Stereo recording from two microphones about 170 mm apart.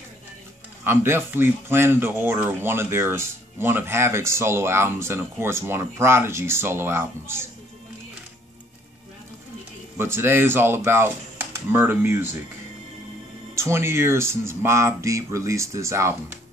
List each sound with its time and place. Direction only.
0.8 s speech: 15° right (ahead or behind)
9.9 s speech: 15° right (ahead or behind)
13.6 s speech: 15° right (ahead or behind)